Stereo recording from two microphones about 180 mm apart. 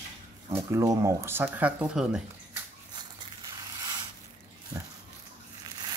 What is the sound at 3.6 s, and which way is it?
Zipper, 20° right (ahead or behind).